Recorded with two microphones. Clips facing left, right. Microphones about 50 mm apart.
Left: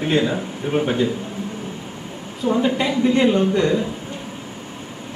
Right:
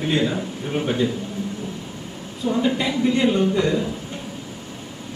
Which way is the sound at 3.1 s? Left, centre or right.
Left.